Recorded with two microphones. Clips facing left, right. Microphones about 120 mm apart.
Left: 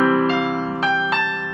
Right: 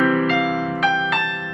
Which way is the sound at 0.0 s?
30° left (ahead or behind).